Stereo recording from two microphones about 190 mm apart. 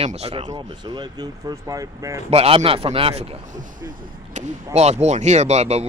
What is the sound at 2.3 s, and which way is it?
Speech, 30° right (ahead or behind).